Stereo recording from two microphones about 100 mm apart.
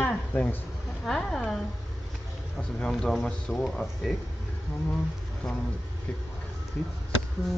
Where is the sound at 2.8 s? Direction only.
5° left (ahead or behind).